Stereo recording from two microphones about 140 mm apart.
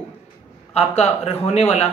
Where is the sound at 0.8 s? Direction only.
50° left (ahead or behind).